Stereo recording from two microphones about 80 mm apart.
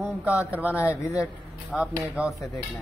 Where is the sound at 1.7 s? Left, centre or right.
Centre.